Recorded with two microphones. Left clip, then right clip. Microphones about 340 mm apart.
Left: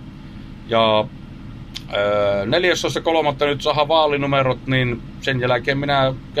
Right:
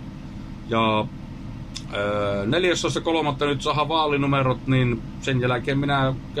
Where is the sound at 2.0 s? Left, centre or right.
Left.